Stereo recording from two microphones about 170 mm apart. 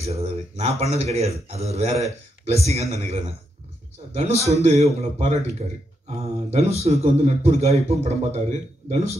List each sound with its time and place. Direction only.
0.0 s speech: 40° right (ahead or behind)